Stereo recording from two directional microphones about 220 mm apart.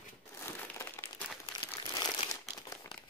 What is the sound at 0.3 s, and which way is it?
Crumpling, 10° left (ahead or behind).